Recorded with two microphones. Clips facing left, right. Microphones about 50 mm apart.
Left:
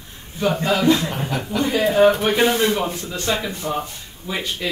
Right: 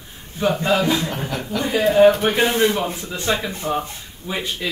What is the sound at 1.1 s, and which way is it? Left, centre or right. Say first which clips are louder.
Speech: left 1 dB; centre.